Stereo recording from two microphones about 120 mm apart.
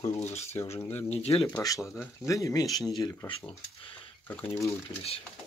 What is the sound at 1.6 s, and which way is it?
Speech, 30° left (ahead or behind).